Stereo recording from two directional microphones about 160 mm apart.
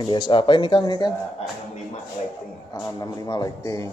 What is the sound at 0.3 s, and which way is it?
Speech, 30° left (ahead or behind).